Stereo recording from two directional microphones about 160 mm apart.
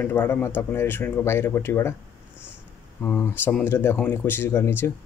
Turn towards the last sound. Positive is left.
turn(degrees=15)  # may be behind; listen again after turning